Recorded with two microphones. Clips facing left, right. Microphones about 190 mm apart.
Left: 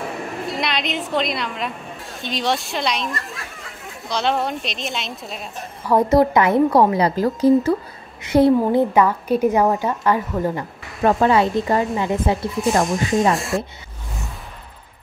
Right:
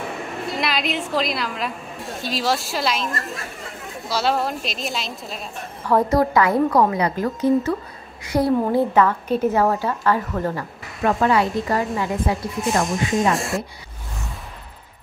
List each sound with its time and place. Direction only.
0.0 s a woman's voice: centre (ahead or behind)
5.9 s a woman's voice: 20° left (ahead or behind)
13.3 s speech: centre (ahead or behind)